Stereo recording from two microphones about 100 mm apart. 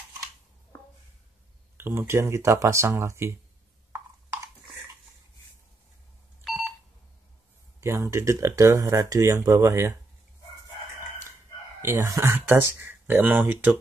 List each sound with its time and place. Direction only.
1.8 s speech: 25° right (ahead or behind)
6.4 s telephone dialing: centre (ahead or behind)
7.8 s speech: 25° right (ahead or behind)
11.8 s speech: 30° right (ahead or behind)